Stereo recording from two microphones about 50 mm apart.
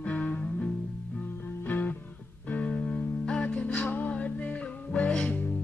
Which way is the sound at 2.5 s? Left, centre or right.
Left.